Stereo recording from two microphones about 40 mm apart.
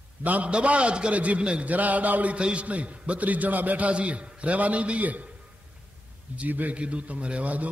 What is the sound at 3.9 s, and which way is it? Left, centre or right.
A man's voice, right.